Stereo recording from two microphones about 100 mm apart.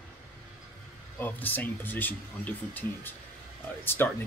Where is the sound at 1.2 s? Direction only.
20° left (ahead or behind).